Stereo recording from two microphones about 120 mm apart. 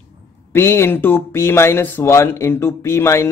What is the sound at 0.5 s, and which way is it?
Speech, 20° left (ahead or behind).